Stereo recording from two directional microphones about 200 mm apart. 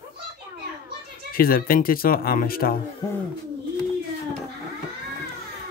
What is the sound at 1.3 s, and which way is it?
Speech, 45° left (ahead or behind).